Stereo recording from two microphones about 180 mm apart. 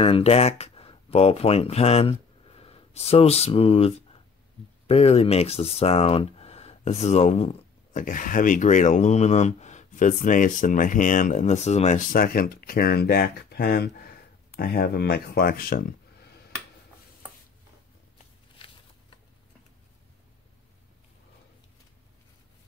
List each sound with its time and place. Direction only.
0.0 s speech: 35° left (ahead or behind); by 15.8 s 55° left (ahead or behind)